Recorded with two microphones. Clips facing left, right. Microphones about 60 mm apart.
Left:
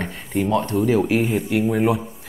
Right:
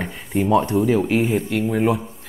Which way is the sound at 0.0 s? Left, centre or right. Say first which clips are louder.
Right 1 dB; centre.